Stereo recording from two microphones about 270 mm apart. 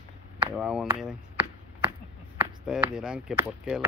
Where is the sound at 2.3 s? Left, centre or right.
Centre.